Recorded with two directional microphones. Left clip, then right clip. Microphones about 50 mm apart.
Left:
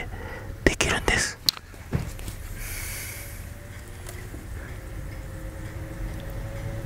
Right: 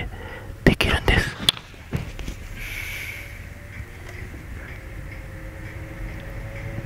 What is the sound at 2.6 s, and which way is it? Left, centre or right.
Snort, left.